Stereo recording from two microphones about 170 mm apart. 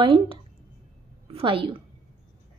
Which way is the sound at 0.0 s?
35° right (ahead or behind).